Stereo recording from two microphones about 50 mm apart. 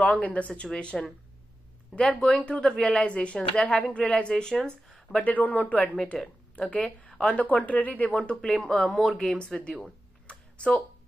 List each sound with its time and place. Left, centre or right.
0.0 s speech: left
0.9 s speech: centre
2.1 s speech: centre
5.2 s speech: left
8.1 s speech: centre
9.2 s speech: centre
10.2 s a sound: left